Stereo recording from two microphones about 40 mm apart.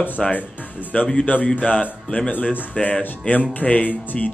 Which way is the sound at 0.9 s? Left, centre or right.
Left.